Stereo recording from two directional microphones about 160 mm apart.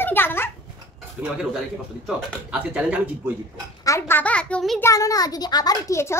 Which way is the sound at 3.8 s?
15° left (ahead or behind).